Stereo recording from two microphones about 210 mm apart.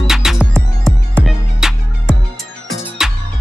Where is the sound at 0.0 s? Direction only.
Centre (ahead or behind).